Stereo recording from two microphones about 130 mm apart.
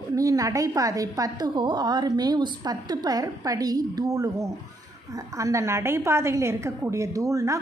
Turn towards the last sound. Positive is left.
turn(degrees=-25)  # may be behind; listen again after turning